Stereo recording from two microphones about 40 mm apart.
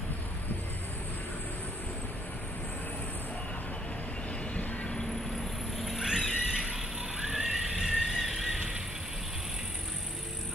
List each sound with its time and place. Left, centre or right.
5.8 s cat: centre
6.0 s a sound: centre
7.5 s vehicle: centre